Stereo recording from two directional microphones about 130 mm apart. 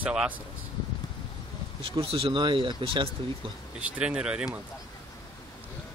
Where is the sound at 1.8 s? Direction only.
45° right (ahead or behind).